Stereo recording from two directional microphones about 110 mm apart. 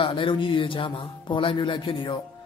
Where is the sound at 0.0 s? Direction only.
50° left (ahead or behind).